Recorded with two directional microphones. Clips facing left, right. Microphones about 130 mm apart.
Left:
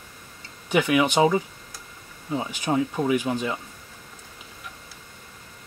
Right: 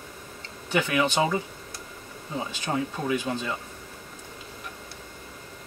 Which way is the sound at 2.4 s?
15° left (ahead or behind).